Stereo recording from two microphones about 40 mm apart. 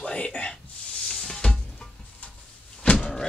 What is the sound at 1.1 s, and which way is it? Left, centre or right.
Music, centre.